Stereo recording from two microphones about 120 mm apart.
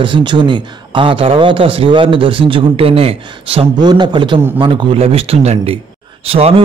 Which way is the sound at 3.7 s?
35° right (ahead or behind).